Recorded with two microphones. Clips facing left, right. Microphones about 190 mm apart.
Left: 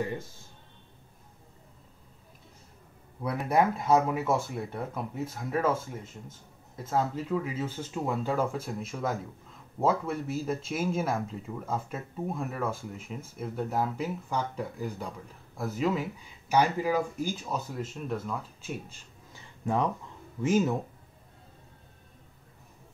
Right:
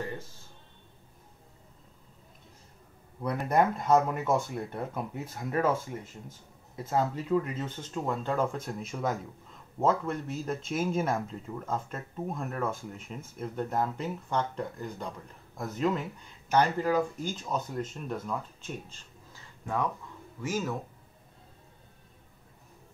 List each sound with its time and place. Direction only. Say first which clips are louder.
3.2 s speech: even; 5° left (ahead or behind)
20.4 s speech: left 7 dB; 20° left (ahead or behind)